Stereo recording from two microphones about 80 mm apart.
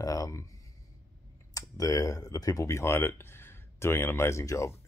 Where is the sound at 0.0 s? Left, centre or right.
Left.